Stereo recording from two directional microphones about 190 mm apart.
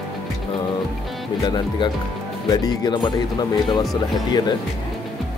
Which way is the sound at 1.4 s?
25° left (ahead or behind).